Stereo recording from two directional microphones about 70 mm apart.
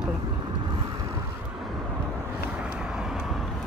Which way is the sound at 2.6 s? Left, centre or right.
Centre.